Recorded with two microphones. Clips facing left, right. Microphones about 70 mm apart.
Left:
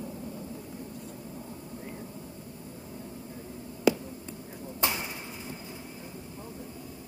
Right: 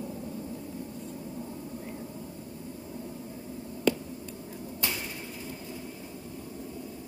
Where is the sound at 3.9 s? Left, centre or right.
Centre.